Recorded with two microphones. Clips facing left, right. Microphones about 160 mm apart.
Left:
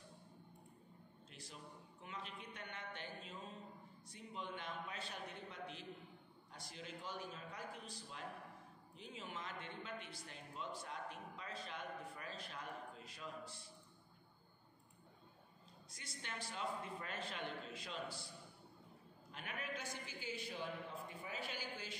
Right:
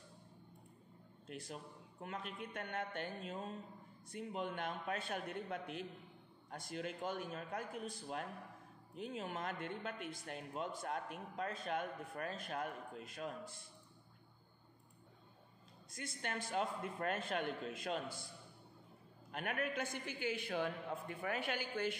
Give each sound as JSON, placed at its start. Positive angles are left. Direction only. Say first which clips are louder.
{"t": 1.2, "sound": "speech", "louder": "right 9 dB", "side_deg": -55}
{"t": 15.9, "sound": "speech", "louder": "right 8 dB", "side_deg": -55}
{"t": 19.3, "sound": "a man's voice", "louder": "right 8 dB", "side_deg": -60}